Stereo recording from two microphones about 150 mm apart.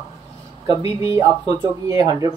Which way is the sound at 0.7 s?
20° right (ahead or behind).